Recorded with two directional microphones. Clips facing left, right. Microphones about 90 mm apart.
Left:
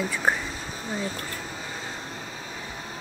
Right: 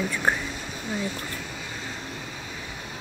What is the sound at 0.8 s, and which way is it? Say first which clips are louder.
Speech: right 1 dB; 35° left (ahead or behind).